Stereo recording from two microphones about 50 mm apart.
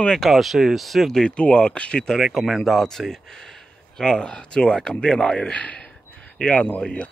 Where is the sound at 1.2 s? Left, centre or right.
Centre.